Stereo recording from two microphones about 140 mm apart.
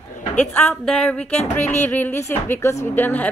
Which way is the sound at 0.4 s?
10° left (ahead or behind).